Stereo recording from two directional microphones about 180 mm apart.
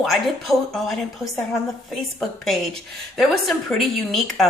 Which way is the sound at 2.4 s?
Centre (ahead or behind).